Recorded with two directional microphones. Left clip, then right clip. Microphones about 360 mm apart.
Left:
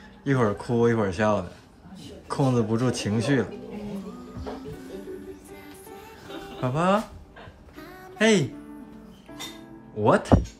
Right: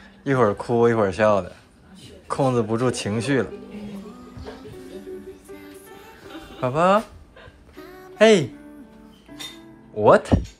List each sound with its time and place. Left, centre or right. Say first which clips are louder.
0.2 s speech: right 5 dB; centre
6.4 s speech: right 6 dB; centre
7.8 s a sound: right 7 dB; centre
9.9 s speech: right 6 dB; centre